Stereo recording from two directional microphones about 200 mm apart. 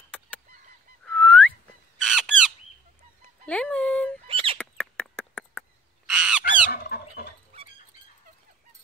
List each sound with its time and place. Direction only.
1.0 s whistling: 5° left (ahead or behind)
2.0 s squawk: centre (ahead or behind)
3.4 s dog: 5° left (ahead or behind)
4.3 s a sound: 25° right (ahead or behind)
4.6 s crow: 5° left (ahead or behind)
6.7 s fowl: 50° left (ahead or behind)